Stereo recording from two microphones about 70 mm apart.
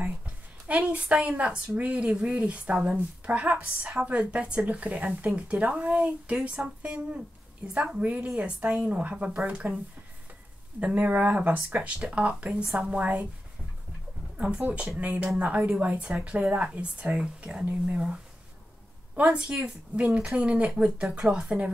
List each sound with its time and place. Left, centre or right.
0.7 s speech: centre
10.8 s speech: centre
14.3 s a sound: centre
14.6 s speech: right
19.2 s speech: centre